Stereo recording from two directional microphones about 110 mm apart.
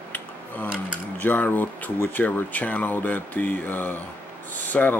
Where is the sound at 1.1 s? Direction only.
15° left (ahead or behind).